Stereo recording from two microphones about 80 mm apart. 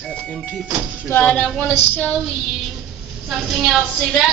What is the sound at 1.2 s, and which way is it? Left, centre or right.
Female singing, centre.